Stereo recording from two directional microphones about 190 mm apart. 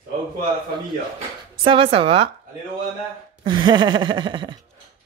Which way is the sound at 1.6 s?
25° right (ahead or behind).